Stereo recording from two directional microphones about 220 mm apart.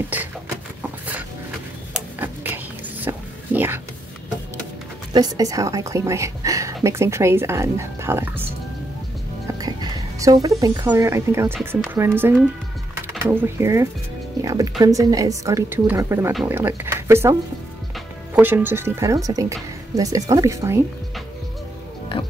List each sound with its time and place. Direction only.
2.1 s whispering: 10° right (ahead or behind)
5.1 s a woman's voice: 15° right (ahead or behind)
9.6 s a woman's voice: 20° right (ahead or behind)